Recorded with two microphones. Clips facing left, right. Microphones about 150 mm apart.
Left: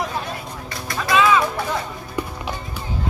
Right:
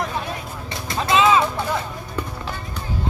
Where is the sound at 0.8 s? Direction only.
25° right (ahead or behind).